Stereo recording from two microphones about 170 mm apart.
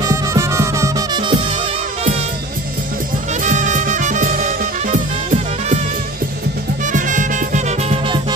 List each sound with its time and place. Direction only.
0.0 s music: 20° right (ahead or behind)
3.4 s music: 45° right (ahead or behind)
6.9 s music: 50° right (ahead or behind)